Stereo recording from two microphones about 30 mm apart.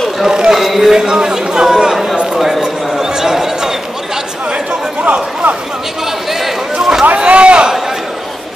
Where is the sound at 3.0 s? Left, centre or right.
Centre.